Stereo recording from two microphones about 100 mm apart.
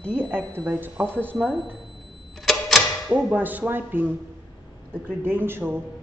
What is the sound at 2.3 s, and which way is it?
Typewriter, centre (ahead or behind).